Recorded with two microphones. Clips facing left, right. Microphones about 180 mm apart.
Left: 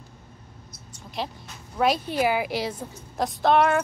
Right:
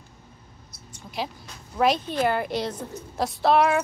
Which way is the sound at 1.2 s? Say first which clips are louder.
Even; centre (ahead or behind).